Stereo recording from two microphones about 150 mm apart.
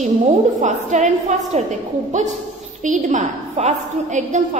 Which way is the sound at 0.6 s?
50° right (ahead or behind).